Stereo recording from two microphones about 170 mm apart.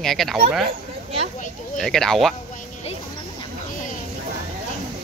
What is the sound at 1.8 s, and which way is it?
Speech, 5° left (ahead or behind).